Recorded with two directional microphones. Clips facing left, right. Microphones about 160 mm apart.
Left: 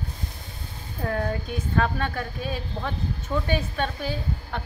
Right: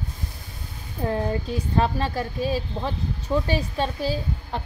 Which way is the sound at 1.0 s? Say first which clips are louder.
Right 2 dB; 30° right (ahead or behind).